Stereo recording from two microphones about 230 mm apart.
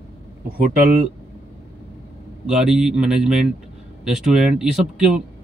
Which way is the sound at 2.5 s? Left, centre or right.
Centre.